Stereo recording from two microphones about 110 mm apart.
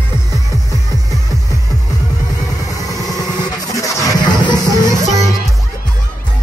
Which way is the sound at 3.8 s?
40° left (ahead or behind).